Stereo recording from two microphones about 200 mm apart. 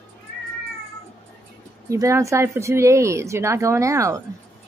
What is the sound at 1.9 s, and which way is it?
Speech, 15° right (ahead or behind).